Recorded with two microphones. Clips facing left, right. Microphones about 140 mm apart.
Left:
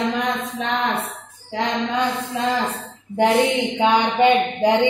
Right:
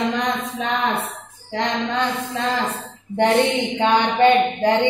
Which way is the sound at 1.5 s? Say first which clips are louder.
Even; 5° left (ahead or behind).